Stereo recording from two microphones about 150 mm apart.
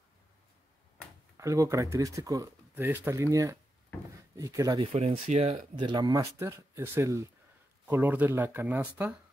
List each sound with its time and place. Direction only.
1.3 s speech: 20° right (ahead or behind)
4.9 s speech: 45° right (ahead or behind)
5.8 s speech: 30° right (ahead or behind); by 9.1 s 10° right (ahead or behind)